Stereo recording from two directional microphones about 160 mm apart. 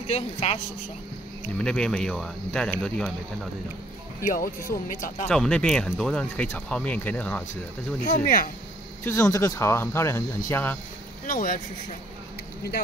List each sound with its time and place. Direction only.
0.0 s speech: 40° left (ahead or behind)
1.6 s speech: 5° left (ahead or behind)
4.2 s speech: 60° left (ahead or behind)
5.3 s speech: 5° left (ahead or behind)
8.0 s speech: 55° left (ahead or behind)
9.0 s speech: 15° left (ahead or behind)
11.2 s speech: 60° left (ahead or behind)